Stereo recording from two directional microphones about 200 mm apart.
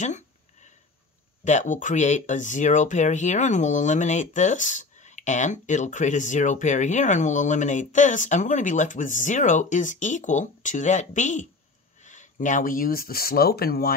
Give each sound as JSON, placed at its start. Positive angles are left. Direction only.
{"t": 1.4, "sound": "speech", "side_deg": 35}